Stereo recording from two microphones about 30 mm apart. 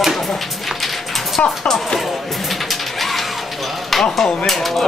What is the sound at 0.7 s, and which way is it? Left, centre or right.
Music, centre.